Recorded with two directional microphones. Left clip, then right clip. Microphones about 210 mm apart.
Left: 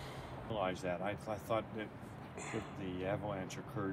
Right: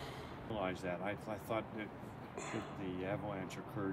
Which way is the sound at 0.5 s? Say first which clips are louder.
Left 2 dB; 5° left (ahead or behind).